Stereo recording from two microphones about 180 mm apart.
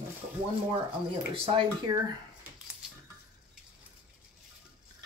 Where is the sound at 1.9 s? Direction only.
20° right (ahead or behind).